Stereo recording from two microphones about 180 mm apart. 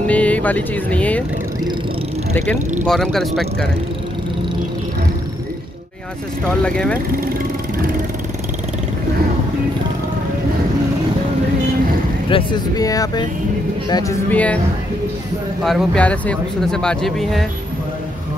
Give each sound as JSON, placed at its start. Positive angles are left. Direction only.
{"t": 0.0, "sound": "speech", "side_deg": 5}
{"t": 2.9, "sound": "speech", "side_deg": 0}
{"t": 6.6, "sound": "speech", "side_deg": 5}
{"t": 12.3, "sound": "speech", "side_deg": 25}
{"t": 14.3, "sound": "speech", "side_deg": 10}
{"t": 15.6, "sound": "speech", "side_deg": 5}